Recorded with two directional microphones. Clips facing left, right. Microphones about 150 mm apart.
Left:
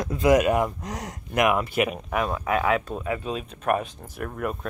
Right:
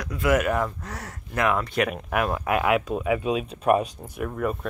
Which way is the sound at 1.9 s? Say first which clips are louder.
Right 1 dB; 5° right (ahead or behind).